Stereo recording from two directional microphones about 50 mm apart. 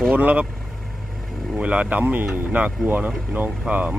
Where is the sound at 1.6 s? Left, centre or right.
Right.